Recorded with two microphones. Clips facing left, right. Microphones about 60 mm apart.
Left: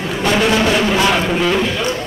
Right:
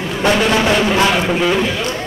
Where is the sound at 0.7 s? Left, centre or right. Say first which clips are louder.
Even; centre.